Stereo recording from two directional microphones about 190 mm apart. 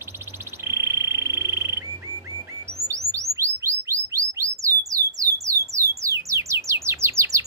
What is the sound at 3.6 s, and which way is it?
Bird, 15° right (ahead or behind).